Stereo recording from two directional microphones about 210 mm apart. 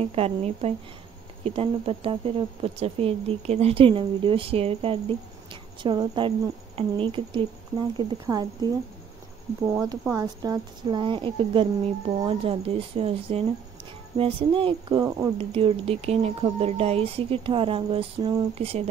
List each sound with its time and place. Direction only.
0.0 s speech: 30° right (ahead or behind)
9.7 s speech: 15° right (ahead or behind)
15.3 s speech: 25° right (ahead or behind)